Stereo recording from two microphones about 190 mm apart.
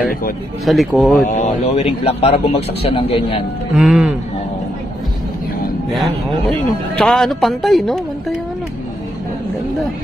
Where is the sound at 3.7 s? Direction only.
Centre (ahead or behind).